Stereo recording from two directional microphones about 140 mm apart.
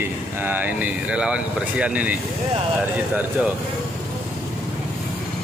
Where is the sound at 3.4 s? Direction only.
10° right (ahead or behind).